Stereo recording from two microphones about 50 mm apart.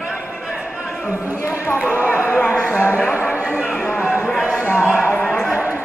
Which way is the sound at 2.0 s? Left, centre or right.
Right.